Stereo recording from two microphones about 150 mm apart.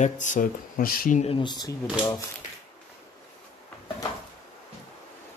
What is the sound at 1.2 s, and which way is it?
Speech, 40° left (ahead or behind).